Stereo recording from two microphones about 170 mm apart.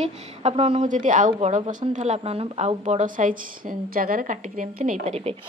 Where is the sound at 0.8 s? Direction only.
50° right (ahead or behind).